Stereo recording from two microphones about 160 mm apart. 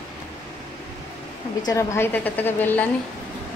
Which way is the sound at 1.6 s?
15° left (ahead or behind).